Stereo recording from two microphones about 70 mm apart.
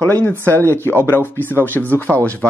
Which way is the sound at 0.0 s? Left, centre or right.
Left.